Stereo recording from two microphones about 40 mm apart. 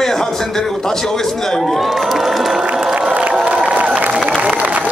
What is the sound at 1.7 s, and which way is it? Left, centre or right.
Speech, centre.